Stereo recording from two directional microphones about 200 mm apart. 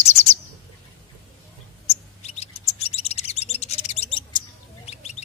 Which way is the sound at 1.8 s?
30° left (ahead or behind).